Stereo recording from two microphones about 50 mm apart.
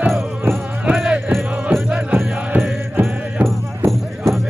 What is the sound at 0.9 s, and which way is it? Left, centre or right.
Music, centre.